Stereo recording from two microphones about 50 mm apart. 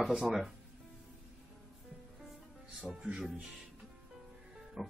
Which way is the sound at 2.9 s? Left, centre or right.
Right.